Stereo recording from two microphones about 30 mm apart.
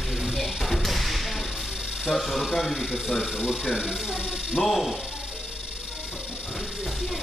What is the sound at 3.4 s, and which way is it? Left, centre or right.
Speech, centre.